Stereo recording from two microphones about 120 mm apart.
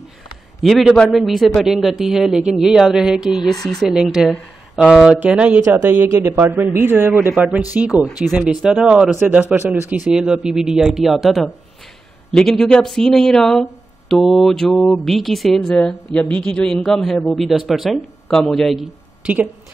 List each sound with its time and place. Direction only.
0.6 s speech: centre (ahead or behind); by 7.4 s 15° right (ahead or behind)
7.9 s speech: 25° left (ahead or behind)
8.2 s speech: 10° right (ahead or behind)
19.2 s speech: 15° right (ahead or behind)